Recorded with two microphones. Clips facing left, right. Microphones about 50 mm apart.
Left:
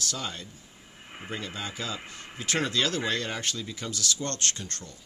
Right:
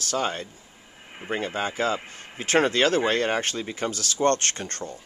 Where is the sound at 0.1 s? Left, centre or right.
Right.